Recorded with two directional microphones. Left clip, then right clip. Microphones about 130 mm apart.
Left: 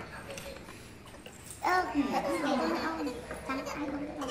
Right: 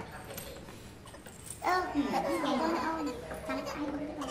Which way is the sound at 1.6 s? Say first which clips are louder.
Left 2 dB; 25° left (ahead or behind).